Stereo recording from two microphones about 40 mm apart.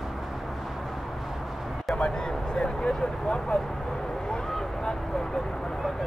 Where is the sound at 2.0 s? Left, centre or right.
Centre.